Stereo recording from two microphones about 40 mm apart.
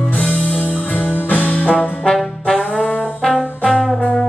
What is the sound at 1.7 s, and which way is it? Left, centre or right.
Trombone, left.